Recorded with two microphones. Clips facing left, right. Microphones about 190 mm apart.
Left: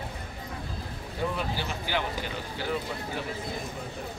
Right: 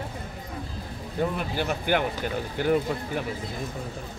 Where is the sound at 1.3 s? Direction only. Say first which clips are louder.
Right 4 dB; 55° right (ahead or behind).